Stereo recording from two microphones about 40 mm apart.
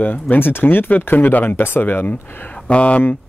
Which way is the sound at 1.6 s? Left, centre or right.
Left.